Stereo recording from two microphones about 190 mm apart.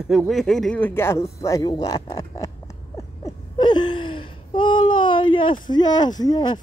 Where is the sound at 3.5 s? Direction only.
25° left (ahead or behind).